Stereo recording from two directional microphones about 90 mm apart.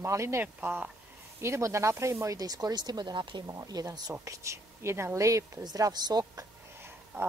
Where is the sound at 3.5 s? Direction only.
45° right (ahead or behind).